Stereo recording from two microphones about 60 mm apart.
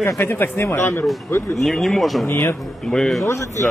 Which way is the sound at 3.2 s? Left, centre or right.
Left.